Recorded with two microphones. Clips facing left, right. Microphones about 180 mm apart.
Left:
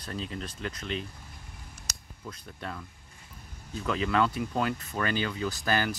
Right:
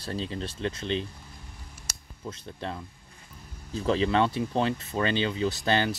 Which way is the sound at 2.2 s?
25° right (ahead or behind).